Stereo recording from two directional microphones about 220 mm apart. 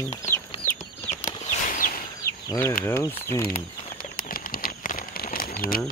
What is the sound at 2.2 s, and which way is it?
Chicken, 10° left (ahead or behind).